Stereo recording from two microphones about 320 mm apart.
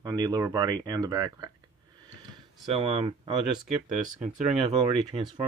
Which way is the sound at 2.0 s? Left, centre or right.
Centre.